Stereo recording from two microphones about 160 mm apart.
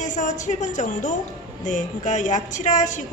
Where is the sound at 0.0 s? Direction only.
50° left (ahead or behind).